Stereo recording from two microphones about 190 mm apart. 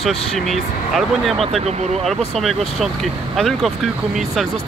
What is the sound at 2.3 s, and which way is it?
Speech, centre (ahead or behind).